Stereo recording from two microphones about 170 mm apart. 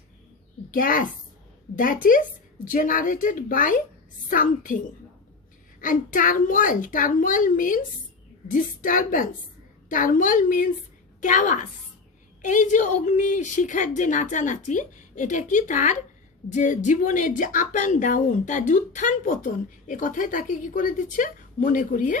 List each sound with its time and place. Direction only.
0.7 s a woman's voice: 55° left (ahead or behind)
2.0 s a woman's voice: 50° left (ahead or behind)
5.8 s a woman's voice: 55° left (ahead or behind)